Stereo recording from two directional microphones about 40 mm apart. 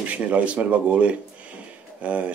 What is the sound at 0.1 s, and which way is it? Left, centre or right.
Speech, right.